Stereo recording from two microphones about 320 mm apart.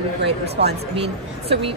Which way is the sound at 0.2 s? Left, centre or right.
Right.